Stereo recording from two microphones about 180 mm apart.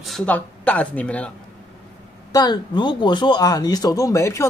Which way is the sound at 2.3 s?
25° left (ahead or behind).